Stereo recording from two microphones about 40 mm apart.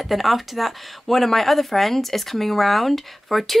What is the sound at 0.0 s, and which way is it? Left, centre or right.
Speech, centre.